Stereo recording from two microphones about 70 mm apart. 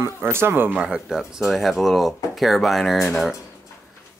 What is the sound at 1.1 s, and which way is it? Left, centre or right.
Speech, centre.